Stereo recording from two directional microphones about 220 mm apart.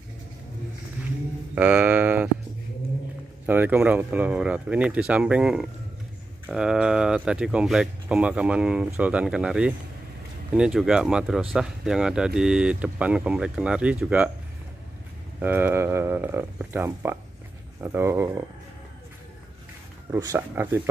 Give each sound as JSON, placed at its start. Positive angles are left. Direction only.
{"t": 1.5, "sound": "a sound", "side_deg": -5}
{"t": 3.4, "sound": "speech", "side_deg": -10}
{"t": 15.4, "sound": "speech", "side_deg": -10}
{"t": 20.1, "sound": "speech", "side_deg": -10}